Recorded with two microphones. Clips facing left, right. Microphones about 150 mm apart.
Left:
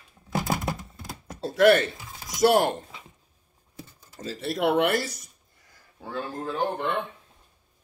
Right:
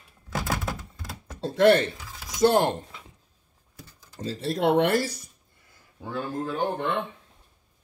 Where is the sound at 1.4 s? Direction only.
25° right (ahead or behind).